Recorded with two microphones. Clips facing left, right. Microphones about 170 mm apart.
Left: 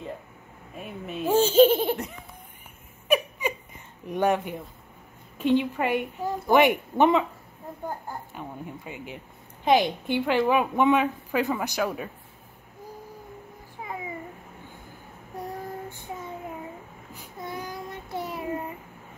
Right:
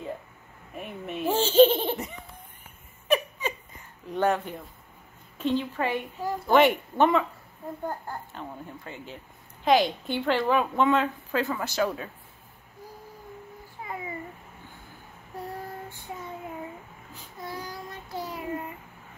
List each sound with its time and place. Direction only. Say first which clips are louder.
0.7 s a woman's voice: even; centre (ahead or behind)
3.1 s a sound: left 1 dB; 10° left (ahead or behind)
5.4 s a woman's voice: left 4 dB; 15° left (ahead or behind)
8.3 s a woman's voice: left 2 dB; 10° left (ahead or behind)
15.4 s female singing: left 2 dB; 20° left (ahead or behind)
17.1 s child singing: left 2 dB; 15° left (ahead or behind)